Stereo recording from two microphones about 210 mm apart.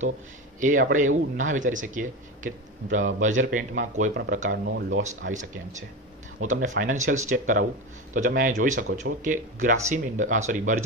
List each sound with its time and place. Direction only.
0.6 s speech: 40° right (ahead or behind)
4.5 s speech: 55° right (ahead or behind)
5.3 s speech: 35° right (ahead or behind)